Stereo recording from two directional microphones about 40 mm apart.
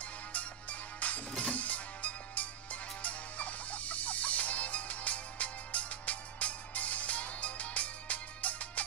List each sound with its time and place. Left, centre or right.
0.0 s music: left